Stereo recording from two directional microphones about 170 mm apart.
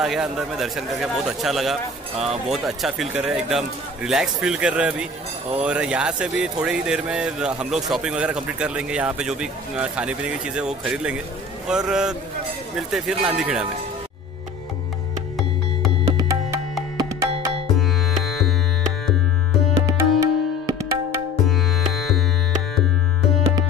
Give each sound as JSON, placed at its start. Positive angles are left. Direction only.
{"t": 0.0, "sound": "speech", "side_deg": -5}
{"t": 16.2, "sound": "music", "side_deg": -20}
{"t": 19.9, "sound": "tabla", "side_deg": -20}
{"t": 21.5, "sound": "music", "side_deg": 0}